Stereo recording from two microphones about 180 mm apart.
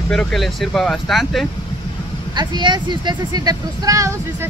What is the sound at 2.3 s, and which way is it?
Speech, 25° right (ahead or behind).